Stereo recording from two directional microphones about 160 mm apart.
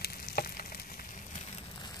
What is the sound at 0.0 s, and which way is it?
Frying, 70° left (ahead or behind).